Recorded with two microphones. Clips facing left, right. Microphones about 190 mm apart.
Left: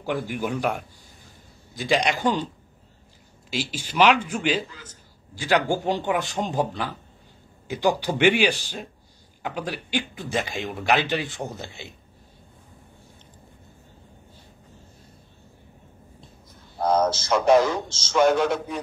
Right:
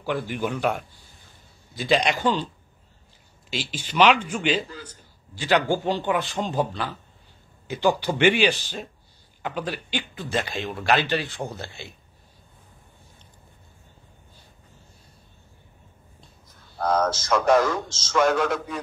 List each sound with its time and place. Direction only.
0.0 s a man's voice: 15° left (ahead or behind)
3.4 s a man's voice: 10° left (ahead or behind)
16.7 s a man's voice: 20° left (ahead or behind); by 18.6 s 5° left (ahead or behind)